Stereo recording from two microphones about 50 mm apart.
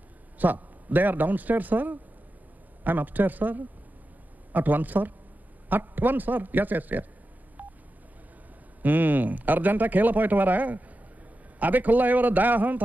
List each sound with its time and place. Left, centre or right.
0.4 s speech: right
8.8 s speech: right